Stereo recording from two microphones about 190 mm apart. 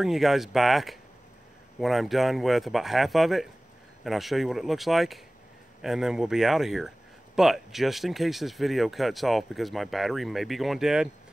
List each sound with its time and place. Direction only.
0.0 s speech: centre (ahead or behind)